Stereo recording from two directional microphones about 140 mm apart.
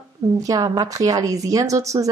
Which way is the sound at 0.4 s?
25° right (ahead or behind).